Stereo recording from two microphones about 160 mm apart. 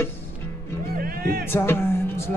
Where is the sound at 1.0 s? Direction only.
65° right (ahead or behind).